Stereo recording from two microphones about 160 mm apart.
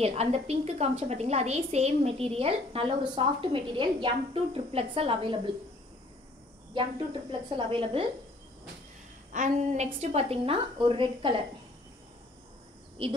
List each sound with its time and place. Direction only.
0.0 s a woman's voice: 40° right (ahead or behind)
6.7 s a woman's voice: 30° right (ahead or behind)
9.3 s a woman's voice: 50° right (ahead or behind)
9.9 s a woman's voice: 40° right (ahead or behind)
13.0 s a woman's voice: 35° right (ahead or behind)